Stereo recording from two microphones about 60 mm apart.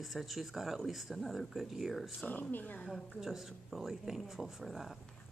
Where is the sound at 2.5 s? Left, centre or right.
Left.